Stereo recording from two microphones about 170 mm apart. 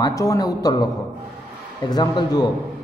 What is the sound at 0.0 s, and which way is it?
Speech, 20° left (ahead or behind).